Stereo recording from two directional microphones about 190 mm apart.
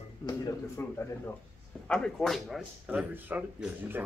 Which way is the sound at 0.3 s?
10° left (ahead or behind).